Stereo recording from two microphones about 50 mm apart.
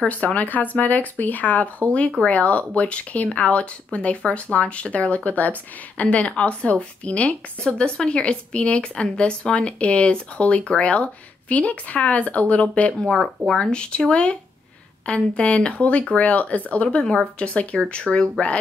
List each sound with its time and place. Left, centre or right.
0.1 s speech: left
13.0 s speech: centre
13.6 s speech: left